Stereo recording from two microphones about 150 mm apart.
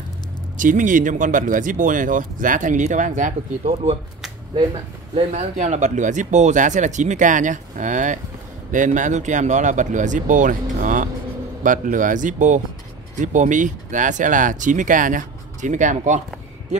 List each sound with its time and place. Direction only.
0.6 s speech: 60° right (ahead or behind)
5.1 s speech: 50° right (ahead or behind)